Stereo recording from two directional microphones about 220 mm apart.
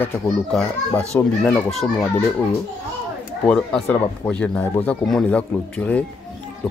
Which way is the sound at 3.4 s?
5° left (ahead or behind).